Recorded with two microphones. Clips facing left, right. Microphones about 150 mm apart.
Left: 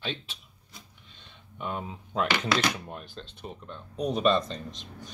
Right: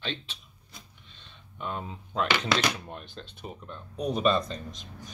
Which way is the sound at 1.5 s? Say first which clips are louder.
Left 1 dB; 10° left (ahead or behind).